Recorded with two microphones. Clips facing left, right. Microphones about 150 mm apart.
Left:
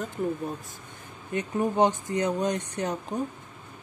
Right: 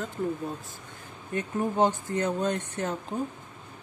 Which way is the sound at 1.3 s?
20° left (ahead or behind).